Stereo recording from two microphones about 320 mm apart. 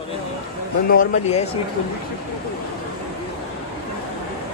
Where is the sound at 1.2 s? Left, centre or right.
Centre.